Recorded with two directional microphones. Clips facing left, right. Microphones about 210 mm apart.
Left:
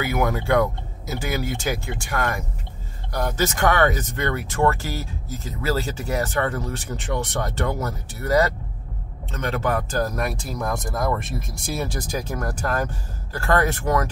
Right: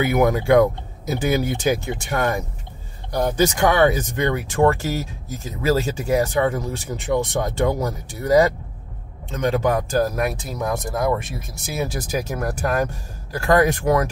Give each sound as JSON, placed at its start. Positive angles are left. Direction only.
{"t": 0.0, "sound": "speech", "side_deg": -20}